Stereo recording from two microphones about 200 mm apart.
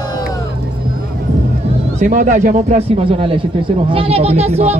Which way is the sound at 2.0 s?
40° right (ahead or behind).